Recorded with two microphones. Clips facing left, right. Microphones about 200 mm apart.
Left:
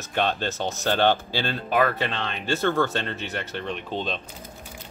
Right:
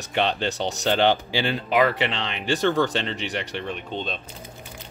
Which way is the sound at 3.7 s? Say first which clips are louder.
Left 1 dB; centre (ahead or behind).